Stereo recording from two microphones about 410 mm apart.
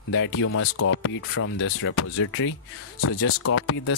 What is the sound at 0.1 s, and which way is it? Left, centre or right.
Speech, left.